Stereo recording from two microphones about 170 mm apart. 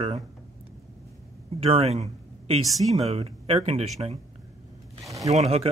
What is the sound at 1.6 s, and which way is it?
Speech, 35° right (ahead or behind).